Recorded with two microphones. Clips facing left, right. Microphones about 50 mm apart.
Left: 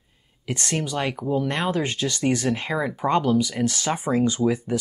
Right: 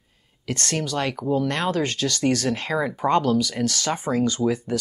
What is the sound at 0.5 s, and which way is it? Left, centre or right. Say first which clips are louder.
Speech: even; centre.